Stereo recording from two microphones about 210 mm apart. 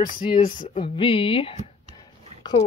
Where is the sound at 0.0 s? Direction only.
20° left (ahead or behind).